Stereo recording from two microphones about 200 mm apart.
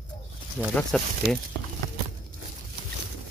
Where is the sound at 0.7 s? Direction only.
5° left (ahead or behind).